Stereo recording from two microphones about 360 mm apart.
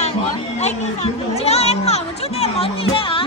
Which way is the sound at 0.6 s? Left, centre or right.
Centre.